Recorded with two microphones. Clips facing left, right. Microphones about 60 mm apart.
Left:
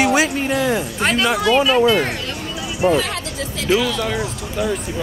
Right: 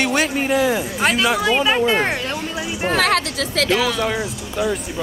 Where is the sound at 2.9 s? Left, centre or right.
Right.